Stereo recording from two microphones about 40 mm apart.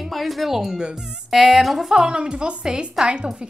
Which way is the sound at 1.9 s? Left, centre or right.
Right.